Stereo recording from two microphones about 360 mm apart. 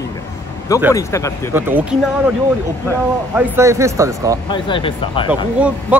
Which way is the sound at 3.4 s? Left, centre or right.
Centre.